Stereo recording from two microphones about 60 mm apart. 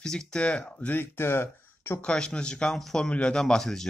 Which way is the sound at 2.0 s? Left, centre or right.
Centre.